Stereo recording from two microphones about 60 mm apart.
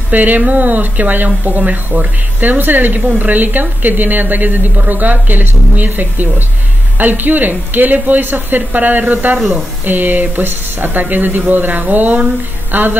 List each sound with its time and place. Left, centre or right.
0.1 s speech: right